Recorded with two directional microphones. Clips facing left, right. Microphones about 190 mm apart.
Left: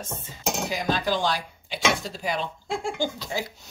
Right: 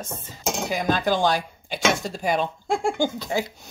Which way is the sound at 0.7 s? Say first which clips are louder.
Right 4 dB; 50° right (ahead or behind).